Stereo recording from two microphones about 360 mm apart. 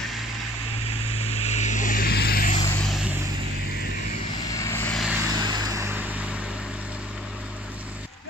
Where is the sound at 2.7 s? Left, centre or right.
Centre.